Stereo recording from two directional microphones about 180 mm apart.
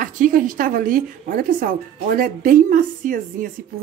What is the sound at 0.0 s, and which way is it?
A woman's voice, 50° right (ahead or behind).